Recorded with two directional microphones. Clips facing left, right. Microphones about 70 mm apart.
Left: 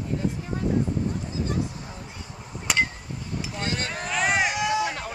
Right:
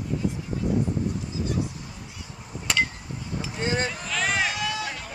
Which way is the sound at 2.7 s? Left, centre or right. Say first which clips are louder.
Left 1 dB; centre.